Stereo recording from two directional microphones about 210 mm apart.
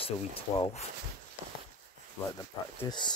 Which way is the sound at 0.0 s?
25° left (ahead or behind).